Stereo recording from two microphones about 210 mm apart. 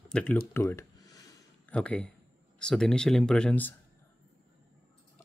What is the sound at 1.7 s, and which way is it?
Speech, 5° left (ahead or behind).